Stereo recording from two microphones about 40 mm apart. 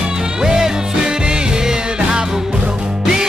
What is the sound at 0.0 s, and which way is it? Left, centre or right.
Music, centre.